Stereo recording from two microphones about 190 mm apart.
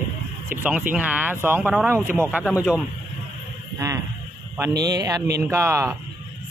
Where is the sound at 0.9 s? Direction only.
10° right (ahead or behind).